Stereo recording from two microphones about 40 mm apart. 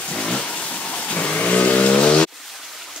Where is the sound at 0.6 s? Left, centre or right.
Left.